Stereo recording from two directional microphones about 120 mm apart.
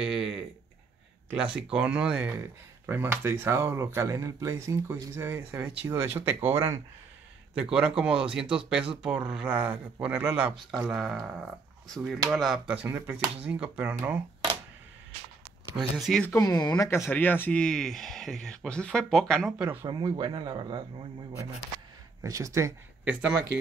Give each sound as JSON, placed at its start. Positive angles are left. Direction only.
{"t": 0.0, "sound": "a sound", "side_deg": -5}
{"t": 1.3, "sound": "speech", "side_deg": -10}
{"t": 7.5, "sound": "speech", "side_deg": -5}
{"t": 10.7, "sound": "speech", "side_deg": 0}
{"t": 16.0, "sound": "speech", "side_deg": 0}
{"t": 16.3, "sound": "speech", "side_deg": 30}
{"t": 19.9, "sound": "speech", "side_deg": -35}
{"t": 22.2, "sound": "speech", "side_deg": -25}